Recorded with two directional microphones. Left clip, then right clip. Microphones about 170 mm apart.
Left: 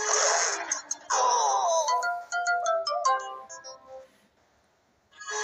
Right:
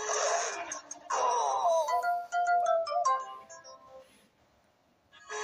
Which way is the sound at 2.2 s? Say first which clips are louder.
Even; 40° left (ahead or behind).